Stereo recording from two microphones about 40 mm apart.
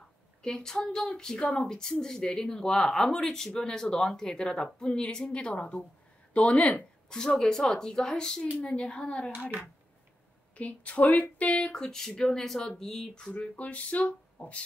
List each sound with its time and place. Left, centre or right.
0.4 s a woman's voice: centre
7.1 s a woman's voice: centre
10.5 s speech: left
11.6 s speech: centre
13.3 s speech: left